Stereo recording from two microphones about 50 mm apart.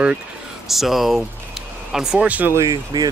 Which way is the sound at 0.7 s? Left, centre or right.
Centre.